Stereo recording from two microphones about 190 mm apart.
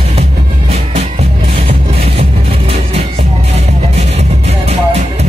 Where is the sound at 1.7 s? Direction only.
30° right (ahead or behind).